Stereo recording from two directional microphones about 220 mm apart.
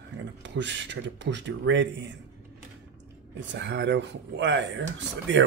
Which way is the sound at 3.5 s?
55° right (ahead or behind).